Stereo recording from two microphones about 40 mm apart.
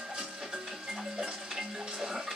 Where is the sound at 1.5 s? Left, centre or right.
Centre.